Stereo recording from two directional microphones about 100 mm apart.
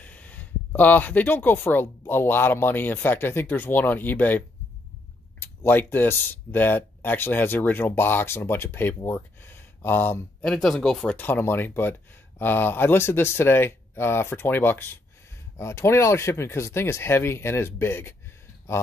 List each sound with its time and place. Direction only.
0.0 s speech: 15° left (ahead or behind)
5.4 s speech: 20° left (ahead or behind)
10.4 s speech: 5° left (ahead or behind)
11.1 s speech: 20° left (ahead or behind)